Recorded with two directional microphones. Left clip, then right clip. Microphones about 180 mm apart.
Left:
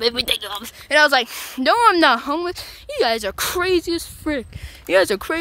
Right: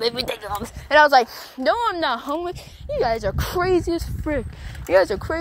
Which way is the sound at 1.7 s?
65° left (ahead or behind).